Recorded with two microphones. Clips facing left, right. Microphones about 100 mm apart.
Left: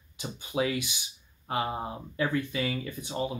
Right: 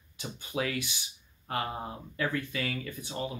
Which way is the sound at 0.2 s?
15° left (ahead or behind).